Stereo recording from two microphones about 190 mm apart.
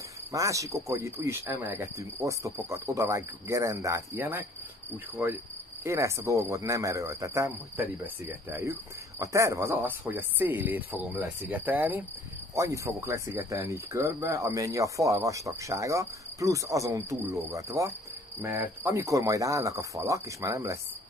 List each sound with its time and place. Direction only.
0.3 s speech: 15° right (ahead or behind)
5.9 s speech: 15° right (ahead or behind)